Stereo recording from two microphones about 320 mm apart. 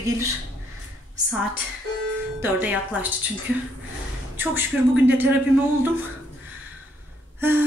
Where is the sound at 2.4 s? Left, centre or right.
Centre.